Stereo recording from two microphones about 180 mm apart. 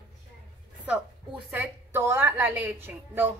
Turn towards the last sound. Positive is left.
turn(degrees=-10)  # may be behind; listen again after turning